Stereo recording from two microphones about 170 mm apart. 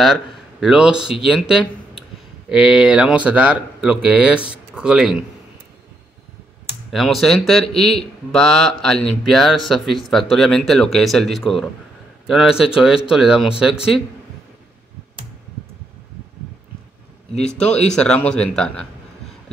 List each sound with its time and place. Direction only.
0.0 s a man's voice: centre (ahead or behind)
6.9 s a man's voice: centre (ahead or behind)
17.4 s a man's voice: 5° left (ahead or behind)